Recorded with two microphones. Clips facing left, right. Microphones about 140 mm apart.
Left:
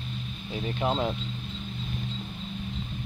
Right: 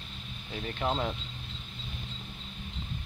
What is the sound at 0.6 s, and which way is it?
Speech, 15° left (ahead or behind).